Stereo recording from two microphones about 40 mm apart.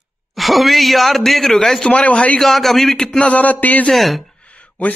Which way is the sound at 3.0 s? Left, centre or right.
Left.